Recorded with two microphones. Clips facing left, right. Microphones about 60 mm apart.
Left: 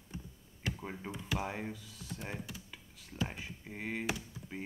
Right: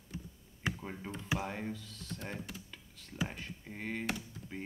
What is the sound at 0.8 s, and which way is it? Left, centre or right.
Speech, centre.